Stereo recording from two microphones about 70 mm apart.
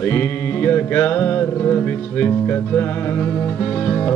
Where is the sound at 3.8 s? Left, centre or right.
Left.